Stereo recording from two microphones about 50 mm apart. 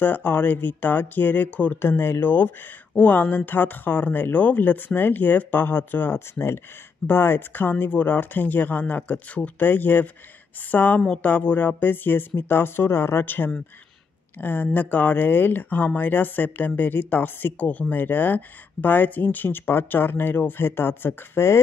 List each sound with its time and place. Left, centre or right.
0.0 s speech: left
1.8 s speech: left
13.2 s speech: left